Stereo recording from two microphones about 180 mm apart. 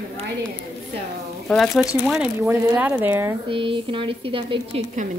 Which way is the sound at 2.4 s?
15° right (ahead or behind).